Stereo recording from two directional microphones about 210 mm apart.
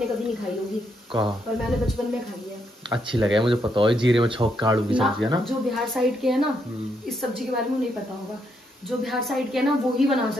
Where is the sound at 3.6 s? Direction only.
25° right (ahead or behind).